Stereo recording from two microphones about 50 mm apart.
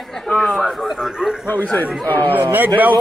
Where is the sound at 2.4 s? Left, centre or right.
Right.